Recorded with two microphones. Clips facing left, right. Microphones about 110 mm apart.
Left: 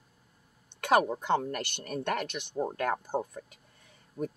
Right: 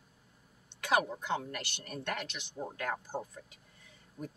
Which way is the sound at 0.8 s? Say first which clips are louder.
Left 6 dB; 50° left (ahead or behind).